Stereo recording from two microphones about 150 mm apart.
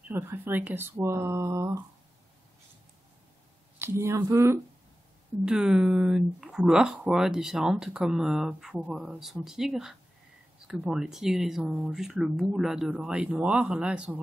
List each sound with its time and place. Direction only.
0.1 s speech: 10° right (ahead or behind)
3.8 s speech: 20° right (ahead or behind)
5.4 s speech: 5° right (ahead or behind)